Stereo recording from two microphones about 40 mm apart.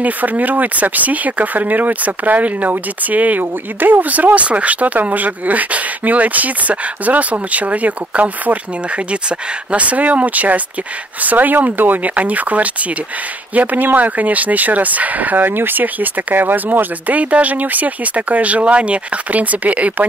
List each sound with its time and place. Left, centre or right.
0.0 s speech: right